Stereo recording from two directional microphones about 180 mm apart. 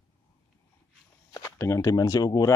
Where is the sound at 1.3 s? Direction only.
20° left (ahead or behind).